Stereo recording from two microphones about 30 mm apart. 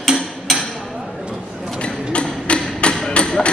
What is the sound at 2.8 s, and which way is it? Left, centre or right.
Thump, left.